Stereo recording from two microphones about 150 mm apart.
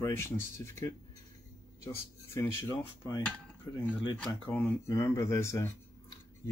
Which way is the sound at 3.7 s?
20° left (ahead or behind).